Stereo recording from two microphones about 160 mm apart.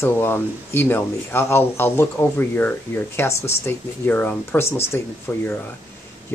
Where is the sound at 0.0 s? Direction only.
15° left (ahead or behind).